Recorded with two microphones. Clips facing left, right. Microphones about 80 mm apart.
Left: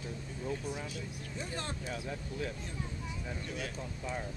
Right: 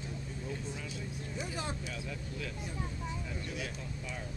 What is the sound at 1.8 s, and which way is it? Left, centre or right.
Speech, left.